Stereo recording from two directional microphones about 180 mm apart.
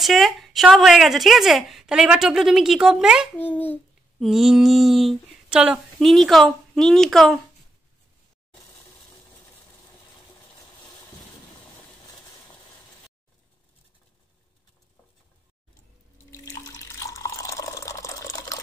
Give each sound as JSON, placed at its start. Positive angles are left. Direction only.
{"t": 0.0, "sound": "speech", "side_deg": 0}
{"t": 3.3, "sound": "a child's voice", "side_deg": 10}
{"t": 4.2, "sound": "speech", "side_deg": 0}
{"t": 16.3, "sound": "water", "side_deg": 15}